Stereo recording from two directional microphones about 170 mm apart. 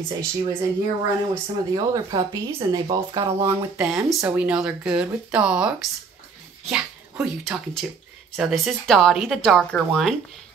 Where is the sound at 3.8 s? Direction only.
5° right (ahead or behind).